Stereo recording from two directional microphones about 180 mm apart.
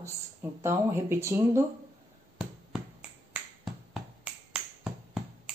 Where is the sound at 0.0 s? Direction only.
15° right (ahead or behind).